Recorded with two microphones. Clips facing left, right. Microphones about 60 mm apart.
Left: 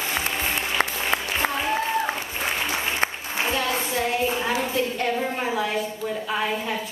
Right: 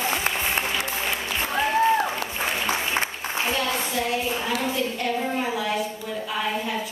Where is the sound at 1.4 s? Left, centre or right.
Left.